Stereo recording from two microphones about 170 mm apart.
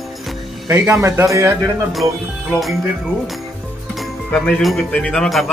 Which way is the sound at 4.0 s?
Centre (ahead or behind).